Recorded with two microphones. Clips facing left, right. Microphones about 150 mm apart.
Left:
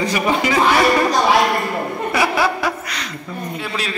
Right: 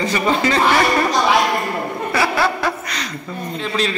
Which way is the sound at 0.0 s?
15° left (ahead or behind).